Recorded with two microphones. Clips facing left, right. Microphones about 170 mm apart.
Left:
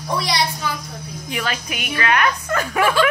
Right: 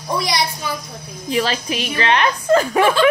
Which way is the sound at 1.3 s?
30° right (ahead or behind).